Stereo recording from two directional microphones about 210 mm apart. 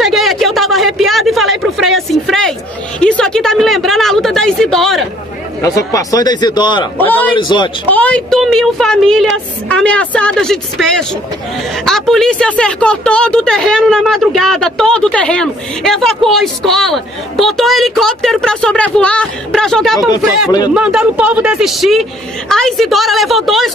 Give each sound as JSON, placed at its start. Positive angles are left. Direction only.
{"t": 0.0, "sound": "a sound", "side_deg": 0}
{"t": 3.0, "sound": "speech", "side_deg": 5}
{"t": 5.6, "sound": "a man's voice", "side_deg": 15}
{"t": 7.0, "sound": "a man's voice", "side_deg": 10}
{"t": 7.3, "sound": "a man's voice", "side_deg": 20}
{"t": 7.9, "sound": "a woman's voice", "side_deg": 5}